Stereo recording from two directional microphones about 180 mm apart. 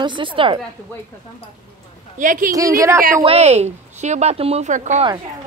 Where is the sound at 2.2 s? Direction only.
45° right (ahead or behind).